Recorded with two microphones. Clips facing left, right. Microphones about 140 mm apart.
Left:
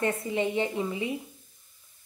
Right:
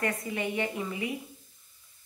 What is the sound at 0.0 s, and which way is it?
A woman's voice, 25° left (ahead or behind).